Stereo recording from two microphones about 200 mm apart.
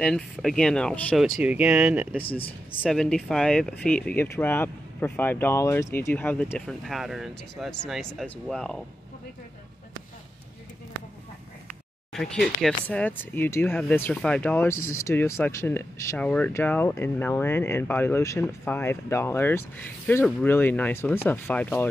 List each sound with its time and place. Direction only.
0.0 s speech: centre (ahead or behind)
2.2 s speech: 30° left (ahead or behind)
2.8 s speech: centre (ahead or behind)
11.6 s a sound: centre (ahead or behind)
12.6 s speech: 5° left (ahead or behind)